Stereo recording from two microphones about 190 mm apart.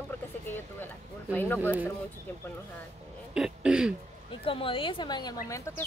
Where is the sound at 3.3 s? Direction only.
5° right (ahead or behind).